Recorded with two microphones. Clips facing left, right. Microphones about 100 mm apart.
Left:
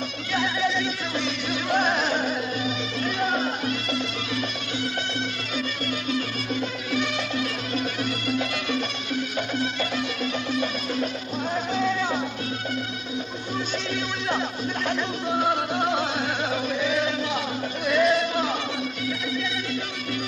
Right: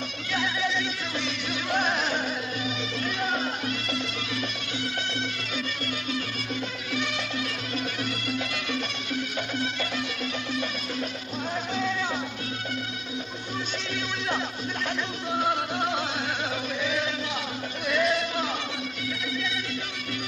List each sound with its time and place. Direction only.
0.3 s music: 40° left (ahead or behind)
6.9 s music: 50° left (ahead or behind)
14.9 s music: 40° left (ahead or behind)
16.8 s chant: 40° left (ahead or behind)
17.8 s music: 35° left (ahead or behind)